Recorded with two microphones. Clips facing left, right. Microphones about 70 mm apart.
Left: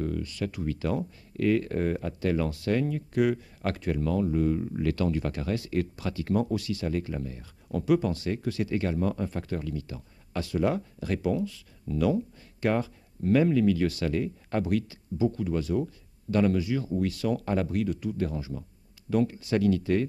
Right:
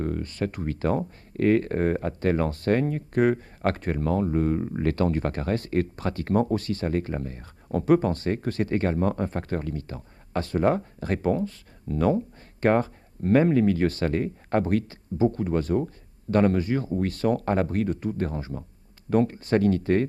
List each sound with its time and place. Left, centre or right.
0.0 s speech: right